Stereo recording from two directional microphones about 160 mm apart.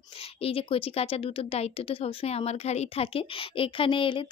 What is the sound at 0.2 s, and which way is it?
Speech, 35° left (ahead or behind).